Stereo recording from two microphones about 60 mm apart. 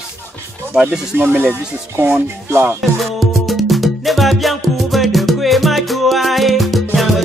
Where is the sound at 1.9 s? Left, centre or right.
Right.